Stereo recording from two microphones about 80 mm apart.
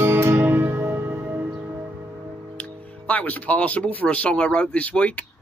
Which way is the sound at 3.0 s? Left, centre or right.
Centre.